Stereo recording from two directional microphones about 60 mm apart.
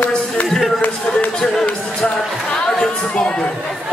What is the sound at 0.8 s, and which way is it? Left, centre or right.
Speech, left.